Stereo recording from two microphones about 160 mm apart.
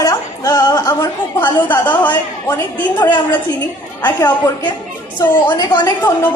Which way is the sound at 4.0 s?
25° left (ahead or behind).